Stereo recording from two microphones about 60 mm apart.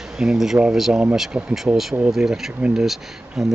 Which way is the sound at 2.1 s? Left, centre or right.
Centre.